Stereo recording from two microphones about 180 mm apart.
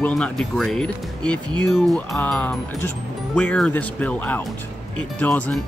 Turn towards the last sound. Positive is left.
turn(degrees=5)  # may be behind; listen again after turning